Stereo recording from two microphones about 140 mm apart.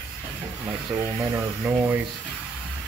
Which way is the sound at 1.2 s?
20° right (ahead or behind).